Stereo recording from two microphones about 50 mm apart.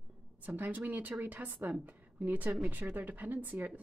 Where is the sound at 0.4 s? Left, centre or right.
Right.